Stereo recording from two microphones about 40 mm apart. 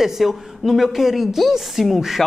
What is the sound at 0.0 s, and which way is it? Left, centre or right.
Speech, centre.